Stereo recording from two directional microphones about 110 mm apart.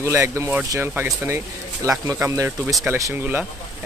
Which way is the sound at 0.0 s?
25° right (ahead or behind).